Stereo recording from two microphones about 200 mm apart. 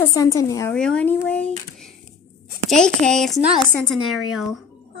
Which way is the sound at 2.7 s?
5° left (ahead or behind).